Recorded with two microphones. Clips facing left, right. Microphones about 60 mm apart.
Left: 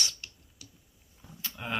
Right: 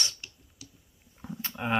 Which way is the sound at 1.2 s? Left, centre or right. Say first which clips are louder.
Right 12 dB; right.